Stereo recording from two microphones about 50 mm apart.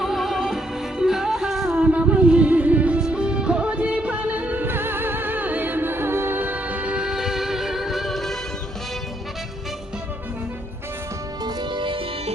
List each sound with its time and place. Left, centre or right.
0.0 s music: centre
1.8 s music: right
3.0 s music: centre
4.6 s music: right
7.0 s music: centre